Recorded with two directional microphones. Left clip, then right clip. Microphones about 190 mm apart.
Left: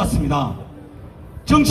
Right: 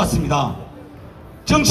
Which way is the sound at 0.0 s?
25° right (ahead or behind).